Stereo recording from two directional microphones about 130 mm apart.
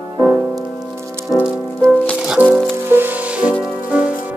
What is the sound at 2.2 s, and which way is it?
Music, 10° right (ahead or behind).